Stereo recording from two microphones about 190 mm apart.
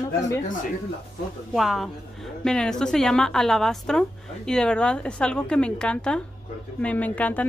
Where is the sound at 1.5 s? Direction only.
Centre (ahead or behind).